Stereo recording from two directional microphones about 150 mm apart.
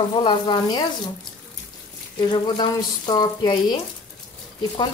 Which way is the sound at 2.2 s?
30° left (ahead or behind).